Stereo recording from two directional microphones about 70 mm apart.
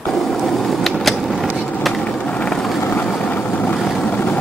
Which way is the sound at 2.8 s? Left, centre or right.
Left.